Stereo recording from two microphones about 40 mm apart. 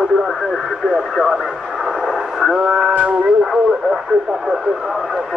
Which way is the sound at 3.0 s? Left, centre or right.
Right.